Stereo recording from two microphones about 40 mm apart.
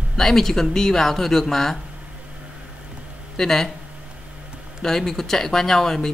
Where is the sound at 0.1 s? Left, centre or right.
Centre.